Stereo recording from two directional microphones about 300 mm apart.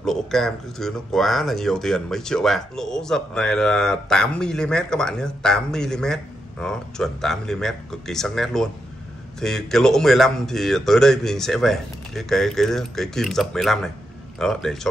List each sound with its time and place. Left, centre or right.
0.0 s speech: centre